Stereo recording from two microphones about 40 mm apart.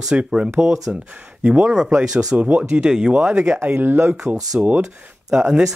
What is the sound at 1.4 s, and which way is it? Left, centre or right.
Speech, right.